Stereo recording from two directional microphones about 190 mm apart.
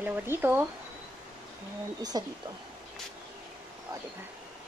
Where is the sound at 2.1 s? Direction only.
20° right (ahead or behind).